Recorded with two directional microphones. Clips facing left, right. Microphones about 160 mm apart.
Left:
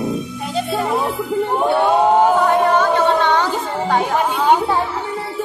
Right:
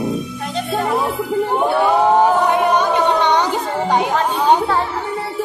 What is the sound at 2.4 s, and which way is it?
Music, 15° right (ahead or behind).